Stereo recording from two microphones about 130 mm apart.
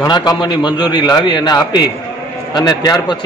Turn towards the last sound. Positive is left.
turn(degrees=30)  # may be behind; listen again after turning